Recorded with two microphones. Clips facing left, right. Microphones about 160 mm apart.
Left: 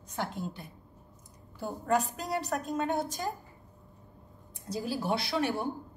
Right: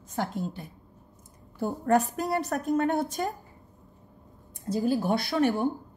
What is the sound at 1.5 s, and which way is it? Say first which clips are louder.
A woman's voice: right 5 dB; 55° right (ahead or behind).